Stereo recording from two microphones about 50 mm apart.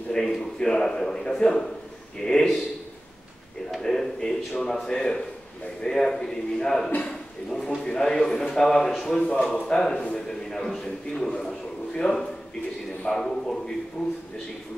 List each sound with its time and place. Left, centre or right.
0.1 s a man's voice: centre
3.7 s a sound: centre
4.6 s a man's voice: centre
7.1 s a sound: centre
7.8 s a man's voice: centre
13.0 s a man's voice: centre